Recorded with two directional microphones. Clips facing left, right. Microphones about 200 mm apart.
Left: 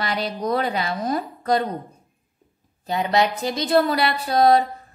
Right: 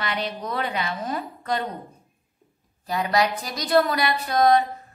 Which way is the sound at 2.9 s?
25° left (ahead or behind).